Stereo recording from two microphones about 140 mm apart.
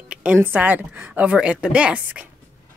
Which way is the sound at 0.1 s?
10° right (ahead or behind).